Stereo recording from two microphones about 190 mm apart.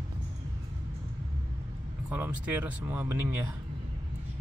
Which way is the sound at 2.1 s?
10° right (ahead or behind).